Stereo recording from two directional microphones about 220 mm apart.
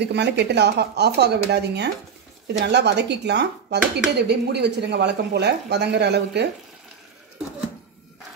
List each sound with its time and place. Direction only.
0.0 s speech: 50° right (ahead or behind)